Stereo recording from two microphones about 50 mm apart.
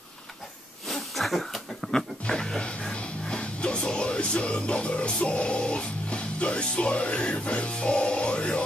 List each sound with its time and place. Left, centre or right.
0.8 s a sound: centre
2.0 s music: centre
5.2 s speech: left